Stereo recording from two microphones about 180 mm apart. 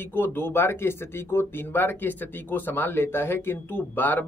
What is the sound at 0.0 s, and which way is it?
Speech, 10° left (ahead or behind).